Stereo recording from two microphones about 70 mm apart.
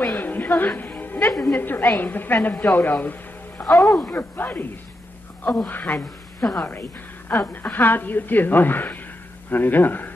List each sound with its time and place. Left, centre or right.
0.0 s music: left
1.4 s a woman's voice: left
3.6 s speech: centre
4.1 s a woman's voice: left
5.7 s a woman's voice: left
7.3 s a woman's voice: centre